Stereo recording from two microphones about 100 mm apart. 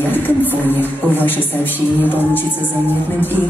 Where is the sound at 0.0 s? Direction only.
20° left (ahead or behind).